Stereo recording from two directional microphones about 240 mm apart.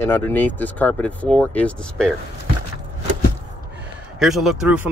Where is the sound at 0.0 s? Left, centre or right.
Centre.